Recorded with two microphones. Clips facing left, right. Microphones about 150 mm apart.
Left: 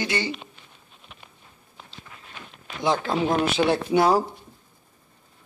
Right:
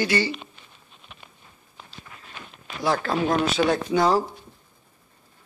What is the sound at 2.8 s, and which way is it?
Speech, 20° left (ahead or behind).